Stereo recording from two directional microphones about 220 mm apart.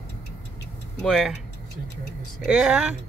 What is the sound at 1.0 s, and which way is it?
Speech, centre (ahead or behind).